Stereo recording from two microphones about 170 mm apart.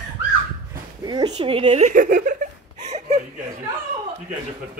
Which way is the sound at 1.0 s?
25° right (ahead or behind).